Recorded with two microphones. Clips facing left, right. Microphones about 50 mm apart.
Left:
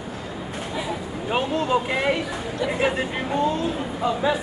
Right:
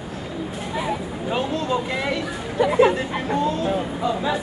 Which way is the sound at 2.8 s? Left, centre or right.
Centre.